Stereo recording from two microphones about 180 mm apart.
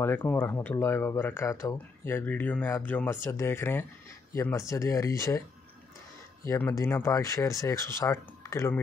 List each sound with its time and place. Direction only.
0.0 s speech: 10° left (ahead or behind)
6.4 s speech: 15° left (ahead or behind)